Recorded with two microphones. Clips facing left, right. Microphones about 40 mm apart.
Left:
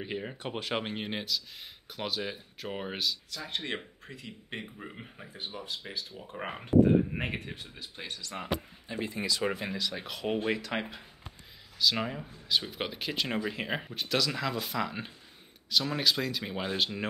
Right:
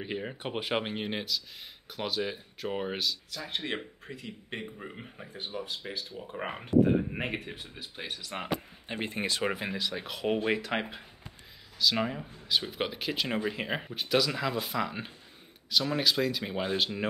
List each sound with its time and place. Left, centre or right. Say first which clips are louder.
0.0 s speech: right 1 dB; centre
0.4 s speech: right 3 dB; centre
8.3 s speech: even; right
9.4 s speech: right 1 dB; centre
11.8 s speech: right 1 dB; centre